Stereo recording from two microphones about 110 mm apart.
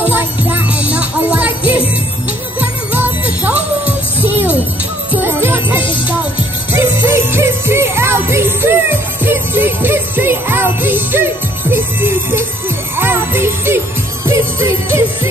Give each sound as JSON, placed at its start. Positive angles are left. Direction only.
{"t": 0.0, "sound": "music", "side_deg": -15}
{"t": 14.2, "sound": "jingle bell", "side_deg": -25}